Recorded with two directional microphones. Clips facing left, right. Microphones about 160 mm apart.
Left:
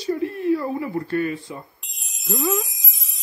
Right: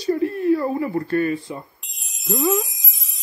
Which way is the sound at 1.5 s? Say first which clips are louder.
Right 3 dB; 25° right (ahead or behind).